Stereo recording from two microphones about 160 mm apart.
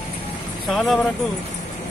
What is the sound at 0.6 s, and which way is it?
Speech, centre (ahead or behind).